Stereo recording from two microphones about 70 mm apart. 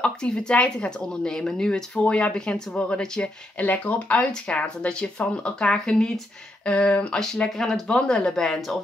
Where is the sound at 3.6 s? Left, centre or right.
Left; by 8.8 s centre.